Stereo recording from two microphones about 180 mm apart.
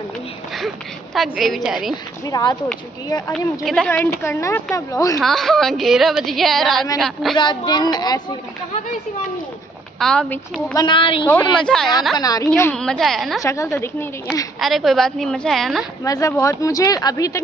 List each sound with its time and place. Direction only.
0.6 s a woman's voice: centre (ahead or behind)
2.2 s speech: 20° left (ahead or behind)
3.6 s a woman's voice: 5° left (ahead or behind)
5.2 s a woman's voice: centre (ahead or behind)
7.3 s speech: 25° left (ahead or behind)
9.9 s a woman's voice: 5° left (ahead or behind)
10.7 s speech: 25° left (ahead or behind)
11.2 s a woman's voice: 5° left (ahead or behind)
12.2 s speech: 20° left (ahead or behind)
12.7 s a woman's voice: 5° left (ahead or behind)
13.4 s a woman's voice: 15° left (ahead or behind)
14.6 s a woman's voice: centre (ahead or behind)
16.0 s speech: 20° left (ahead or behind)